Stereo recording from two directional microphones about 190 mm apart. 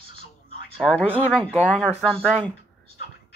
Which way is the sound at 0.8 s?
5° left (ahead or behind).